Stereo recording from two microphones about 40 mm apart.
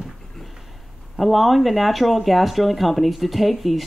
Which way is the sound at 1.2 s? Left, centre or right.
Centre.